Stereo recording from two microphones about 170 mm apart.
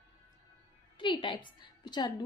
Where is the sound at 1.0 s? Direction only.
30° left (ahead or behind).